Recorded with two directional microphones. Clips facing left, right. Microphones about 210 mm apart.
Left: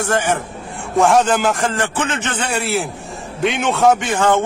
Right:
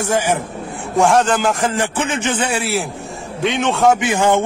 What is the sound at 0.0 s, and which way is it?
A man's voice, 10° right (ahead or behind).